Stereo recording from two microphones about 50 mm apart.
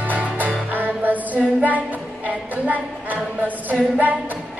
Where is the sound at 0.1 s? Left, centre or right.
Right.